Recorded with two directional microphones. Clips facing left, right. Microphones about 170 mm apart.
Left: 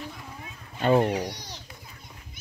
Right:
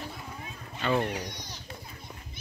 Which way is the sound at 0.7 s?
40° left (ahead or behind).